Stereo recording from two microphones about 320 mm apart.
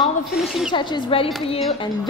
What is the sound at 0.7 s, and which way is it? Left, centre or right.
Speech, centre.